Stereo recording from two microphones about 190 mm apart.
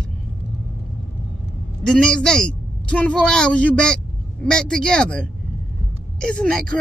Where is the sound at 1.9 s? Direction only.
5° left (ahead or behind).